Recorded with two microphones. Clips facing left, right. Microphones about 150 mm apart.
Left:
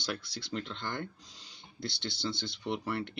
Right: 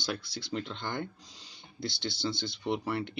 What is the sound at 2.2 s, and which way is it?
Speech, centre (ahead or behind).